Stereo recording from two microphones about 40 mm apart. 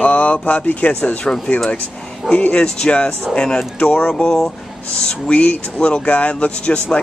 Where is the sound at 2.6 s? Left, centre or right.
Left.